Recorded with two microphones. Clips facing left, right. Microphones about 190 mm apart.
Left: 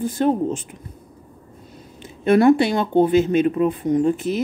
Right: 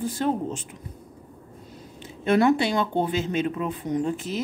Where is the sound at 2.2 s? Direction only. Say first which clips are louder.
Left 6 dB; 55° left (ahead or behind).